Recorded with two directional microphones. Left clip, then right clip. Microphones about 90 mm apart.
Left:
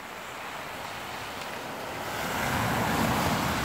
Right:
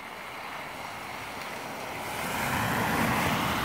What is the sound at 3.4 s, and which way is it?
Vehicle, 20° right (ahead or behind).